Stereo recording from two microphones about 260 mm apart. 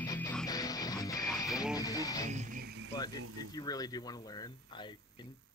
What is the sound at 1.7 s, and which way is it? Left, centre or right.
Speech, centre.